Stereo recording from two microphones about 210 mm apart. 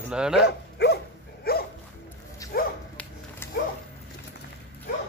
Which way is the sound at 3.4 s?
10° left (ahead or behind).